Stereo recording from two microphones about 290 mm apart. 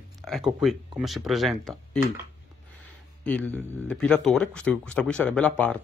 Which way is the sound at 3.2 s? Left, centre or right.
Centre.